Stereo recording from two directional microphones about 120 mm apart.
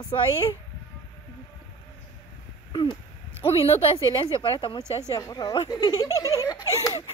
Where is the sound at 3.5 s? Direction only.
50° left (ahead or behind).